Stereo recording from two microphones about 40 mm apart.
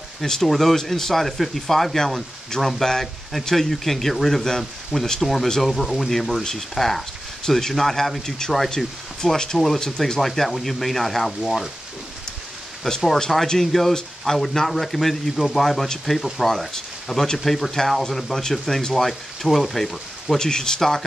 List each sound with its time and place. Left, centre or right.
0.2 s speech: centre
12.9 s speech: centre
20.3 s speech: centre